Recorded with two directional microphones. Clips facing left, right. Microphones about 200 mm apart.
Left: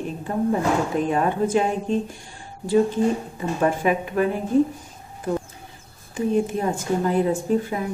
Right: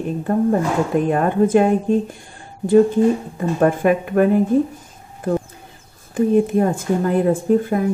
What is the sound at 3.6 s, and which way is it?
Speech, 50° right (ahead or behind).